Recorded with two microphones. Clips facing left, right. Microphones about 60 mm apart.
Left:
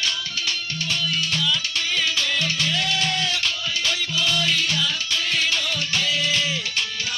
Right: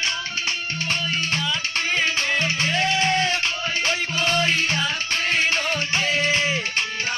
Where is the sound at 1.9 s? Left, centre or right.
Right.